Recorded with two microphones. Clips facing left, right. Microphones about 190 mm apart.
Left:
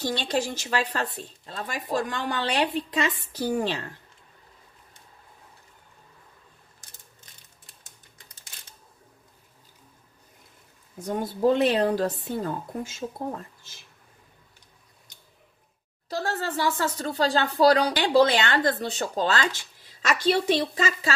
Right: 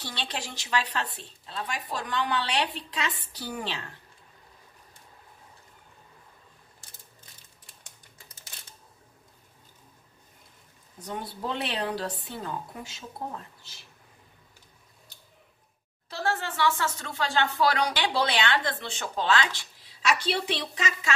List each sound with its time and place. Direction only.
0.0 s speech: 45° left (ahead or behind)
11.1 s speech: 45° left (ahead or behind)
16.1 s speech: 40° left (ahead or behind)